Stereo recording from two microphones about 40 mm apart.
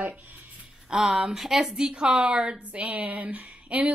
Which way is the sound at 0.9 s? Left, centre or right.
Centre.